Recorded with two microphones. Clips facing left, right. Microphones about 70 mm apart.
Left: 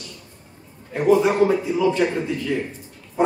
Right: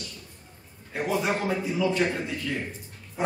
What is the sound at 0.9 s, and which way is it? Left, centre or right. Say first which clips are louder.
A man's voice: left 10 dB; left.